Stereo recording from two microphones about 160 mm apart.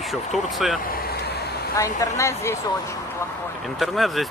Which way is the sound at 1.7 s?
20° left (ahead or behind).